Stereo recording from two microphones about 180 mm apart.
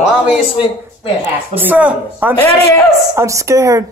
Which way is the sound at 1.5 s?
10° right (ahead or behind).